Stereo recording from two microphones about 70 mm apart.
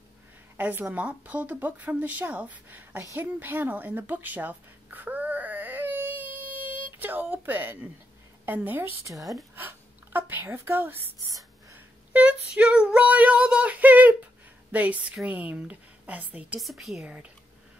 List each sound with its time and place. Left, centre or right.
0.6 s speech: right
3.2 s a sound: right
8.5 s speech: right
9.0 s speech: right
10.1 s speech: right
11.1 s speech: right
12.1 s speech: right
16.5 s speech: centre
17.0 s speech: centre